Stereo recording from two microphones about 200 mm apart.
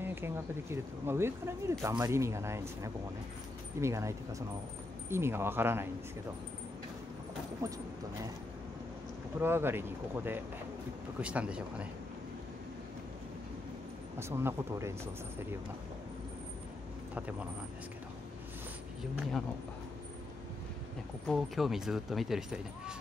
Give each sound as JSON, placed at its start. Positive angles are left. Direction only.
{"t": 0.0, "sound": "speech", "side_deg": -10}
{"t": 7.6, "sound": "speech", "side_deg": -15}
{"t": 9.4, "sound": "speech", "side_deg": -10}
{"t": 14.1, "sound": "speech", "side_deg": -10}
{"t": 21.3, "sound": "speech", "side_deg": 0}